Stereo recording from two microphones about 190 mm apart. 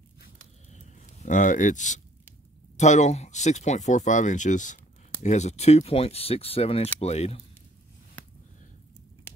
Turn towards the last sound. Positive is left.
turn(degrees=35)  # may be behind; listen again after turning